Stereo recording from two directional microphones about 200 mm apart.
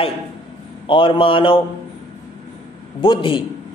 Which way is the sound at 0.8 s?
25° left (ahead or behind).